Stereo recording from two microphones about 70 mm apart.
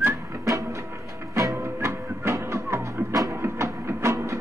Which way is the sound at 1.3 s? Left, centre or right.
Right.